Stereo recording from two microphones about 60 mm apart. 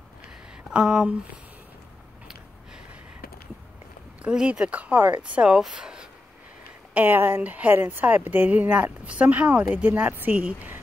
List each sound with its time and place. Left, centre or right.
0.7 s speech: centre
4.2 s speech: centre
6.9 s speech: right
7.4 s speech: right